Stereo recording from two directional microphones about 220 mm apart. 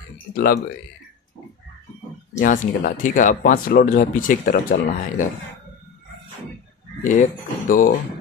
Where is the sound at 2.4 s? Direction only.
40° left (ahead or behind).